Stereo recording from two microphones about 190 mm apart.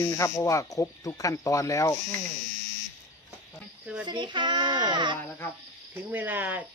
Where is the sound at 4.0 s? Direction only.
25° right (ahead or behind).